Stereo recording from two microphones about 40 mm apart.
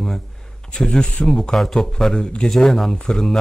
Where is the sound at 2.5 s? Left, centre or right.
Centre.